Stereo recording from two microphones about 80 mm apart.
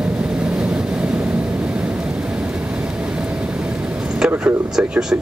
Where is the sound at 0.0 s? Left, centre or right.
Centre.